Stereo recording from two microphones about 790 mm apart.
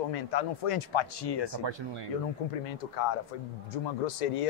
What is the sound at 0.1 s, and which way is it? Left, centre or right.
Speech, left.